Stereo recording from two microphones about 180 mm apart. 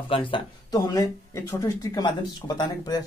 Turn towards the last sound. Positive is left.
turn(degrees=20)  # may be behind; listen again after turning